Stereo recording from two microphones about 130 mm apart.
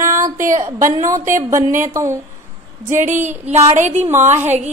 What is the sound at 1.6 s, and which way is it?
Speech, 85° right.